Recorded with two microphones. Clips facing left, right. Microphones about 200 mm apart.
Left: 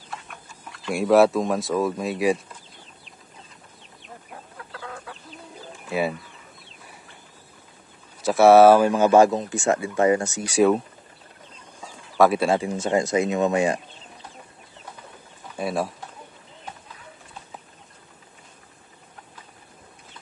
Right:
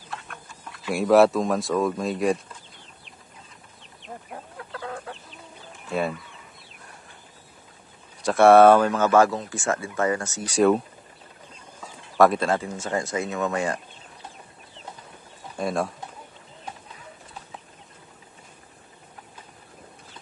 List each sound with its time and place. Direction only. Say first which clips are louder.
0.1 s speech: right 1 dB; centre (ahead or behind)
4.7 s chicken: right 4 dB; 35° right (ahead or behind)
5.9 s speech: left 1 dB; 5° left (ahead or behind)
8.2 s speech: left 1 dB; 5° left (ahead or behind)
12.2 s speech: left 1 dB; 5° left (ahead or behind)
15.5 s speech: even; 5° left (ahead or behind)